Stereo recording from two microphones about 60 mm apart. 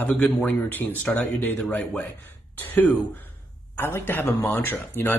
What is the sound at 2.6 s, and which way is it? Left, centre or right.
Speech, left.